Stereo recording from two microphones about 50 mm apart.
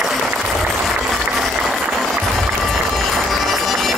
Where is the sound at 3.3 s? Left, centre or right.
Centre.